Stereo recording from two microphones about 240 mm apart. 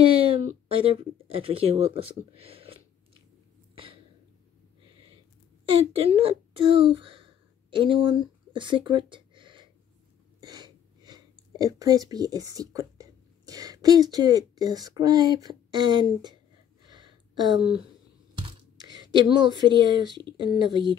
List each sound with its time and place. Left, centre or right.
0.2 s speech: right
3.7 s throat clearing: right
5.7 s speech: right
16.8 s a sound: centre
18.3 s speech: centre